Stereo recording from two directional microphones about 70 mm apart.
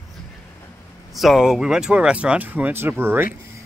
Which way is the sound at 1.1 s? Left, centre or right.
Centre.